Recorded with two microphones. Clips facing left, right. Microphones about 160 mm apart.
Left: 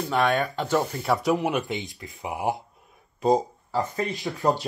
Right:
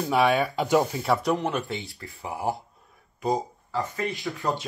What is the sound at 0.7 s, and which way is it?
Speech, 15° right (ahead or behind).